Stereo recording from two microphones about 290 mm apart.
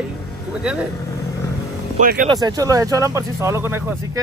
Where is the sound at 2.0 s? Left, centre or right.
Right.